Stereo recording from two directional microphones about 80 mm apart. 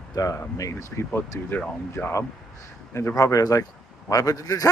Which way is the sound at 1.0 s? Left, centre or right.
Left.